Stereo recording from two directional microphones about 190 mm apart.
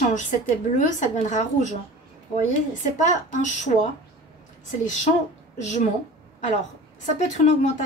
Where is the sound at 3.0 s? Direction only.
40° left (ahead or behind).